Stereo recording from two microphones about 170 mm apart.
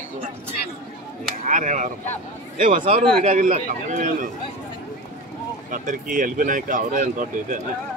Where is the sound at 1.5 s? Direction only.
45° right (ahead or behind).